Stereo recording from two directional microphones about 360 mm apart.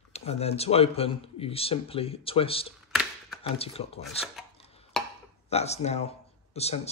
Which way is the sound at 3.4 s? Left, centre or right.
Centre.